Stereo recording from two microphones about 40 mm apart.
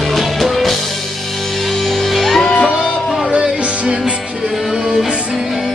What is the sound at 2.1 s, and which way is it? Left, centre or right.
Music, centre.